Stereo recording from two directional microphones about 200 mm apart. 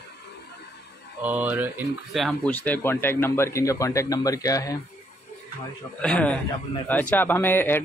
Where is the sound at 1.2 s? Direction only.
10° right (ahead or behind); by 4.7 s 15° left (ahead or behind).